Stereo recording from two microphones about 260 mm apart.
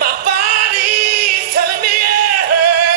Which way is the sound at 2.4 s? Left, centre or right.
Right.